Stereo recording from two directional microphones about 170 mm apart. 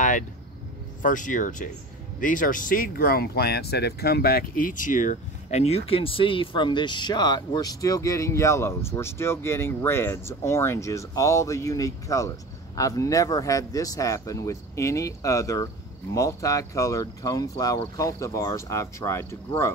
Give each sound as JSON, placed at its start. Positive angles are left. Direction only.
{"t": 1.0, "sound": "speech", "side_deg": 50}